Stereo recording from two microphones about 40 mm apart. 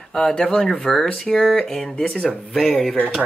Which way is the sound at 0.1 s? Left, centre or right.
Centre.